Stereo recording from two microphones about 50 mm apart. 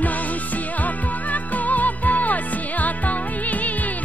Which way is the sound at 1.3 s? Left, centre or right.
Left.